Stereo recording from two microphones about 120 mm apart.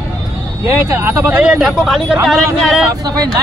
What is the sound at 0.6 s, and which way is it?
Speech, 20° right (ahead or behind).